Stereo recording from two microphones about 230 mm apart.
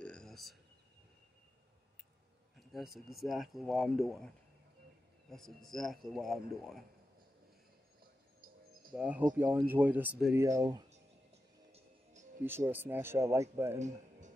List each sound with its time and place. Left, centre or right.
0.0 s a sound: centre
2.7 s speech: centre
5.3 s speech: centre
8.9 s speech: centre
11.7 s music: right
12.4 s speech: centre
13.7 s music: right